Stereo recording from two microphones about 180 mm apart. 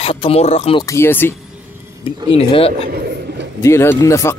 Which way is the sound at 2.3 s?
30° left (ahead or behind).